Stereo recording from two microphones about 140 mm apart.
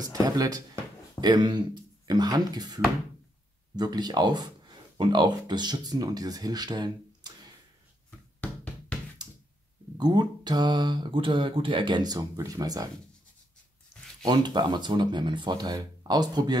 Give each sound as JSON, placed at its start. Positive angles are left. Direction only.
{"t": 0.0, "sound": "speech", "side_deg": -25}
{"t": 9.9, "sound": "speech", "side_deg": -30}
{"t": 14.2, "sound": "speech", "side_deg": -30}